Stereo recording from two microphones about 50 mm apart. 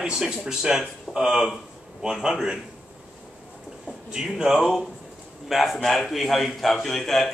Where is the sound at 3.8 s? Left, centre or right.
Centre.